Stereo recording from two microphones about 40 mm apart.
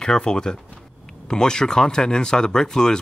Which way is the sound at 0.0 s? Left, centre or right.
Centre.